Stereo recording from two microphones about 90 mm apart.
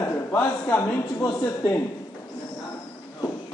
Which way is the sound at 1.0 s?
40° left (ahead or behind).